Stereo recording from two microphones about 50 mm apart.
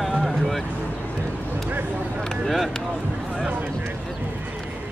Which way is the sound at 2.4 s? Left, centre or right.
Centre.